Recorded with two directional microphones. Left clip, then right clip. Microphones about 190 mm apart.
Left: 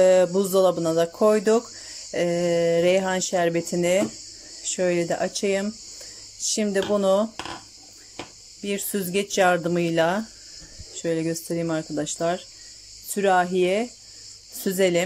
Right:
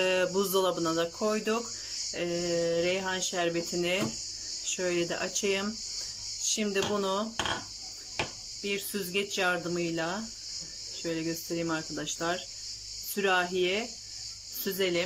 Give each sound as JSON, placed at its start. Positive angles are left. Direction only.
{"t": 0.0, "sound": "speech", "side_deg": 30}
{"t": 8.6, "sound": "speech", "side_deg": 35}
{"t": 11.0, "sound": "speech", "side_deg": 30}